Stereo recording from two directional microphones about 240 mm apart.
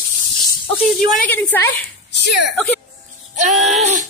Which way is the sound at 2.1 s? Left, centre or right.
Left.